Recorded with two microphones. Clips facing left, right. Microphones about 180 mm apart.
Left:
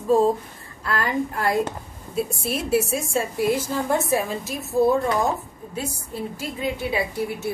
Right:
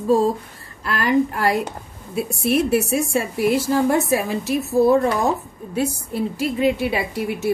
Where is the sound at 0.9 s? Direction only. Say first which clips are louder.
Right 6 dB; 80° right.